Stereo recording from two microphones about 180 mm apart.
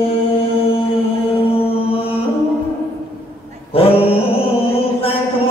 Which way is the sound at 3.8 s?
30° left (ahead or behind).